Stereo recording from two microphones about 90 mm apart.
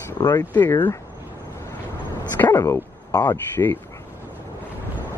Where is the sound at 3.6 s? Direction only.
30° left (ahead or behind).